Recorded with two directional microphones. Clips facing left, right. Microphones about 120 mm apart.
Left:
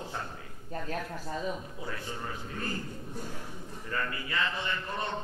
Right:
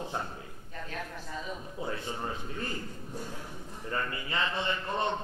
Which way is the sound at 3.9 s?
25° right (ahead or behind).